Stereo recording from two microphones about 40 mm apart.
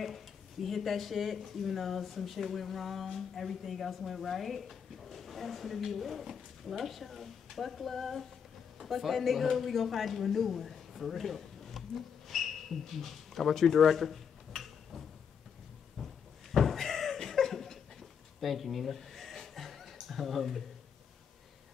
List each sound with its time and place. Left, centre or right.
0.0 s speech: centre
12.3 s a sound: centre
18.4 s chuckle: centre